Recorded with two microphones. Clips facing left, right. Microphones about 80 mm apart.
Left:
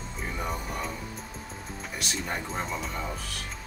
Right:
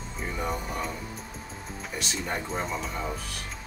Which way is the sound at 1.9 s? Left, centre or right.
Centre.